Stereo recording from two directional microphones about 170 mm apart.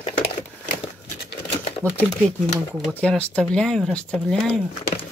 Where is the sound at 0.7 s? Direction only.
70° left (ahead or behind).